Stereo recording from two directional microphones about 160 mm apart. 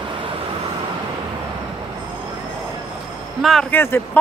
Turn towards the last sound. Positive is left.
turn(degrees=15)  # may be behind; listen again after turning